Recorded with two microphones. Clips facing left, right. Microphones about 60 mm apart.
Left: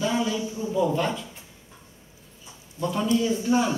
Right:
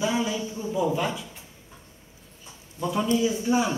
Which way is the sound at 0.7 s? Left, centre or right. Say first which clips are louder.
Left 2 dB; centre.